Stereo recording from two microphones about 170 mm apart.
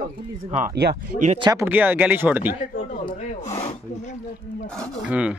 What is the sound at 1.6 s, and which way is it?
Speech, 10° right (ahead or behind).